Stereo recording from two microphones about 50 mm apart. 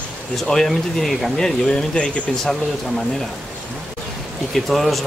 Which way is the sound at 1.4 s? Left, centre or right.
Centre.